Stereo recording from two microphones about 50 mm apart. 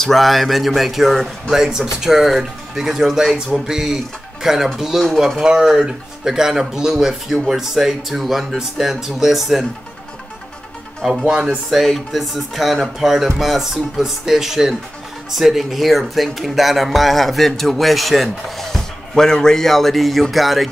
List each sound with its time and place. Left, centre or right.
0.0 s speech: centre
11.1 s speech: centre
11.7 s speech: centre